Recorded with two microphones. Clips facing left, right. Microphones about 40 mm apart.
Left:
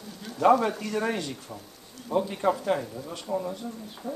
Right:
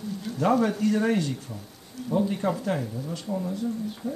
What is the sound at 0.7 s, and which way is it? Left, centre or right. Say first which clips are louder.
Speech: right 5 dB; left.